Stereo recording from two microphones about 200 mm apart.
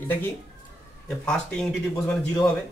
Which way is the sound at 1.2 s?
5° left (ahead or behind).